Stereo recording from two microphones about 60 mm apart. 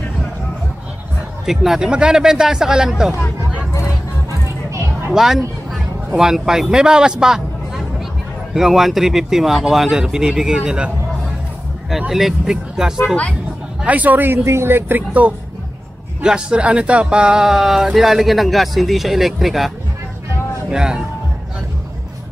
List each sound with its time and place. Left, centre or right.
1.4 s speech: centre
4.3 s a sound: right
5.1 s a man's voice: centre
12.1 s speech: centre
13.8 s speech: right
14.4 s speech: right
16.2 s speech: centre
20.7 s speech: centre